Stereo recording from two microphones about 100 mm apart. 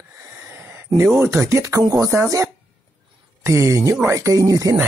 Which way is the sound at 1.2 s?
25° right (ahead or behind).